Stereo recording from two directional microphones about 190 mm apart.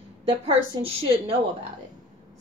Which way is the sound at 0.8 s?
30° right (ahead or behind).